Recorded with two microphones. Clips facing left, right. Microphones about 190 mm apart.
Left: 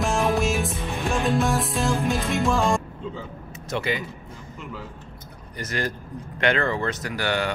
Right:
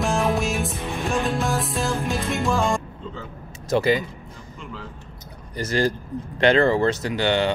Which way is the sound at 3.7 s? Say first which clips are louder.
Right 7 dB; 35° right (ahead or behind).